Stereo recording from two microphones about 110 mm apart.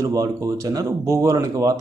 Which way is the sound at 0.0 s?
30° right (ahead or behind).